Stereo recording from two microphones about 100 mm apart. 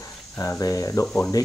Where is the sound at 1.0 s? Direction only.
10° left (ahead or behind).